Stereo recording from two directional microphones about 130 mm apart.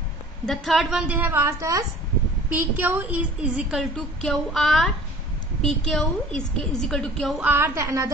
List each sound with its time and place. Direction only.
0.5 s a woman's voice: centre (ahead or behind); by 1.9 s 25° right (ahead or behind)
2.5 s a woman's voice: 15° right (ahead or behind)
3.9 s a woman's voice: 5° left (ahead or behind)
7.3 s a woman's voice: 15° right (ahead or behind)